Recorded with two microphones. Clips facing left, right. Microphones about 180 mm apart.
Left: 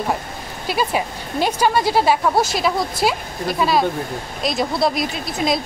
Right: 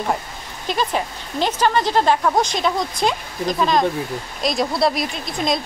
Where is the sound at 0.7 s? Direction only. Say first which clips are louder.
Left 1 dB; 10° left (ahead or behind).